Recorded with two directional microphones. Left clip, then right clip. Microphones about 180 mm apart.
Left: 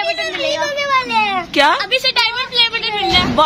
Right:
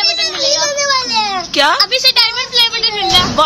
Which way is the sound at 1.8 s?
85° left.